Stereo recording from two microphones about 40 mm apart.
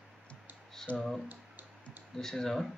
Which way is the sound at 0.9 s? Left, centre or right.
Left.